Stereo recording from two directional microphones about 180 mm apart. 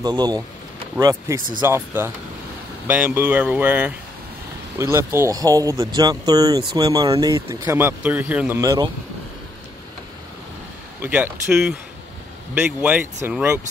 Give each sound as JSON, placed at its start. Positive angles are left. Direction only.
{"t": 0.0, "sound": "speech", "side_deg": -20}
{"t": 11.0, "sound": "speech", "side_deg": -10}